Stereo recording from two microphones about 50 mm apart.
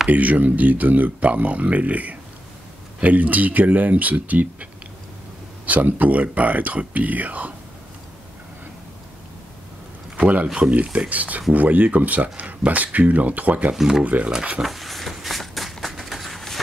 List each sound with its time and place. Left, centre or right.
0.1 s speech: right
5.7 s speech: right
10.1 s speech: right
13.7 s speech: centre
14.0 s speech: right
14.6 s a sound: centre